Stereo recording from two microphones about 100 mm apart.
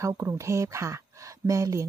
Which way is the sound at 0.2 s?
30° right (ahead or behind).